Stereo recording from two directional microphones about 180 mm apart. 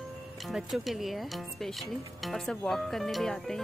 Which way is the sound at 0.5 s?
Centre (ahead or behind).